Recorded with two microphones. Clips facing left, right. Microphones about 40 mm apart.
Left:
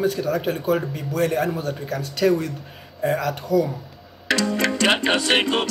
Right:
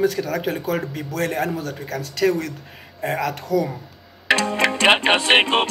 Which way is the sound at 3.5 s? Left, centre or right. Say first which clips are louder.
Left 1 dB; centre.